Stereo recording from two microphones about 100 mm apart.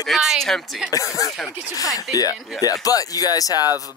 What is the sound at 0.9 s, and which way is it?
Speech, 35° left (ahead or behind).